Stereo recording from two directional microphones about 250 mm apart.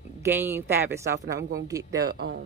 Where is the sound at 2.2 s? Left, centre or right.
Right.